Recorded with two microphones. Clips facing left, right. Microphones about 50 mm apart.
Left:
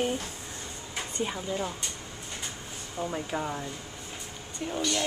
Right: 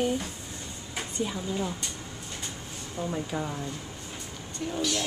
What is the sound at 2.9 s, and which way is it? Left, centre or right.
Speech, centre.